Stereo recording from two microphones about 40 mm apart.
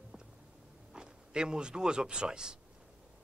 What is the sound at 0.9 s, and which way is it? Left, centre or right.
Speech, centre.